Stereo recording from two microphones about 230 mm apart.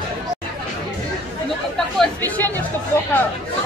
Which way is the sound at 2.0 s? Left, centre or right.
Centre.